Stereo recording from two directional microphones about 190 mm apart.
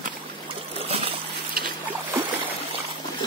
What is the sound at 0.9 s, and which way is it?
Splash, 30° right (ahead or behind).